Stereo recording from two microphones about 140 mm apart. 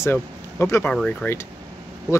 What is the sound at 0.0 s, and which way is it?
Speech, 15° left (ahead or behind).